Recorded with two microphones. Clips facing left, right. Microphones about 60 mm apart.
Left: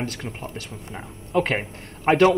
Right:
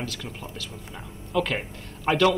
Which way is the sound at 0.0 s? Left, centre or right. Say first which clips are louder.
Left 4 dB; left.